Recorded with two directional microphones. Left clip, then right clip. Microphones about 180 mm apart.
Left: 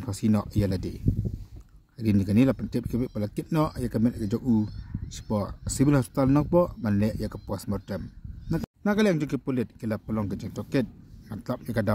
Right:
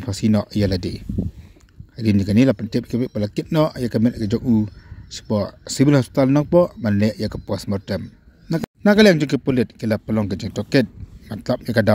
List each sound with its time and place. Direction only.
0.0 s speech: 20° right (ahead or behind)